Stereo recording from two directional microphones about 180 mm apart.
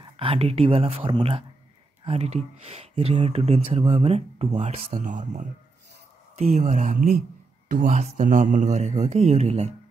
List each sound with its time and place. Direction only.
0.0 s speech: 30° right (ahead or behind)